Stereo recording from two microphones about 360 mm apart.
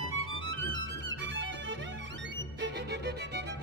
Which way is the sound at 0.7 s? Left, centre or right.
Right.